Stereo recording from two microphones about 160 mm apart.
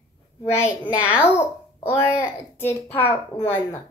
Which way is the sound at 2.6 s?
15° left (ahead or behind).